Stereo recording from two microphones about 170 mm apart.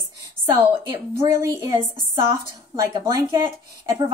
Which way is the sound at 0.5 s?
15° right (ahead or behind).